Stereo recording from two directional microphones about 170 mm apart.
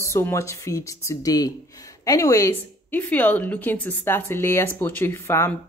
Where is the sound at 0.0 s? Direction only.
15° left (ahead or behind).